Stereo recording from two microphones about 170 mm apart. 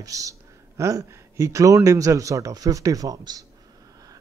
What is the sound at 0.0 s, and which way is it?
Speech, 20° right (ahead or behind).